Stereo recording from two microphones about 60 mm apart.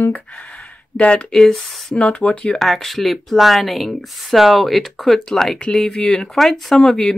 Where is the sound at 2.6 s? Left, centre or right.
Centre.